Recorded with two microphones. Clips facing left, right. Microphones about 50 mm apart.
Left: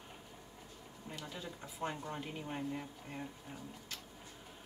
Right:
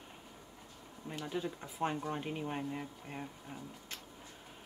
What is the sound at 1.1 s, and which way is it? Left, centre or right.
Speech, right.